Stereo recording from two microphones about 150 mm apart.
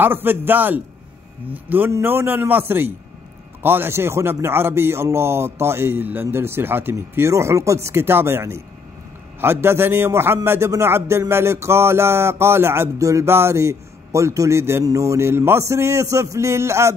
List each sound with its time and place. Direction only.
0.0 s a man's voice: 15° right (ahead or behind)